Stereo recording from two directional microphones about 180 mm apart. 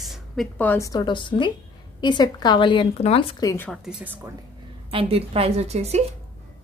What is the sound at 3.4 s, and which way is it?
Speech, 20° left (ahead or behind).